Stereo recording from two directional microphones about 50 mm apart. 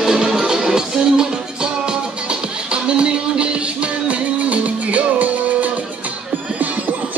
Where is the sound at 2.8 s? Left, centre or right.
Centre.